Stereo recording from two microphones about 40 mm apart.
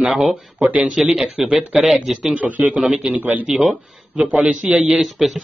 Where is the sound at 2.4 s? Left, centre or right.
Right.